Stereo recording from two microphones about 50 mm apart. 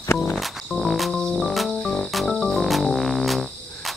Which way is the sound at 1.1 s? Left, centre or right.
Centre.